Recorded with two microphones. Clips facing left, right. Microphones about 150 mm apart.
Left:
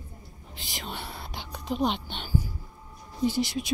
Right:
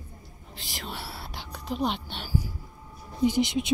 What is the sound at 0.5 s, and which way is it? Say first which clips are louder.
Whispering: even; centre (ahead or behind).